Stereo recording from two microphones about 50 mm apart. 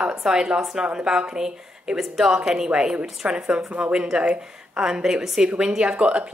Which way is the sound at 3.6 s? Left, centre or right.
Right.